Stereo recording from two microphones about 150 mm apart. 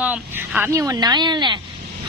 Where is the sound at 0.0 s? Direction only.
10° right (ahead or behind).